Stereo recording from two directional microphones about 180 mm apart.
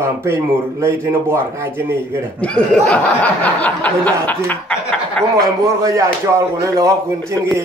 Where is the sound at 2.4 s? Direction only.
5° left (ahead or behind).